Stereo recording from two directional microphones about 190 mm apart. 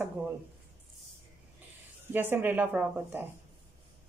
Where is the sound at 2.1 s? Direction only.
10° right (ahead or behind).